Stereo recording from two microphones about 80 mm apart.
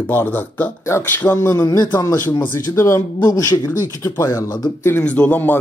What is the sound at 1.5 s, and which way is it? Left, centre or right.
Speech, left.